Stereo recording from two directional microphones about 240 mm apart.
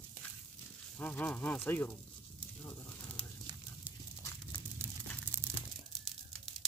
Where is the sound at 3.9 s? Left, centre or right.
Centre.